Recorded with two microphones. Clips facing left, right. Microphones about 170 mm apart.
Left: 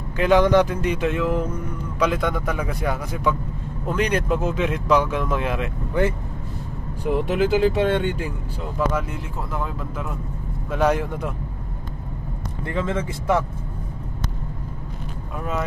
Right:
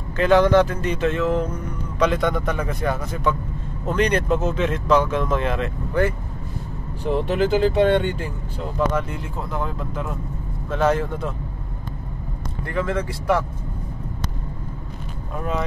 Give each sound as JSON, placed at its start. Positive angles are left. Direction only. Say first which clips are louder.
{"t": 0.2, "sound": "speech", "louder": "right 1 dB", "side_deg": 15}
{"t": 7.1, "sound": "speech", "louder": "even", "side_deg": 10}
{"t": 9.5, "sound": "speech", "louder": "right 2 dB", "side_deg": 0}
{"t": 10.7, "sound": "speech", "louder": "even", "side_deg": 10}
{"t": 12.6, "sound": "speech", "louder": "right 1 dB", "side_deg": 20}